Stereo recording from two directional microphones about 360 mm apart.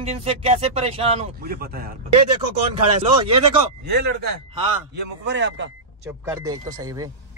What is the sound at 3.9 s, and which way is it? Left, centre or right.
Speech, right.